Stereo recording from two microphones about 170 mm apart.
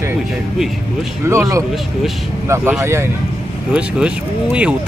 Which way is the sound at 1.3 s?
20° right (ahead or behind).